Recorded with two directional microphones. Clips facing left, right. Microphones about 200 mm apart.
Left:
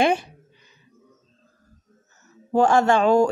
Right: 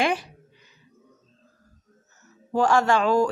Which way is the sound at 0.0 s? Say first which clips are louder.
Left 4 dB; 25° left (ahead or behind).